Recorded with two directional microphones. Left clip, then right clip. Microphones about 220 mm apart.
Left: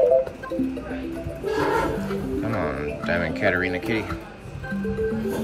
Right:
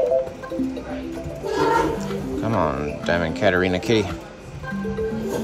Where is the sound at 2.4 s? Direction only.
10° right (ahead or behind).